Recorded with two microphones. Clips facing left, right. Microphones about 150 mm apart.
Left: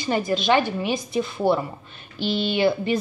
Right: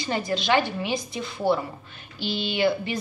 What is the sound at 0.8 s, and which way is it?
Speech, 20° right (ahead or behind).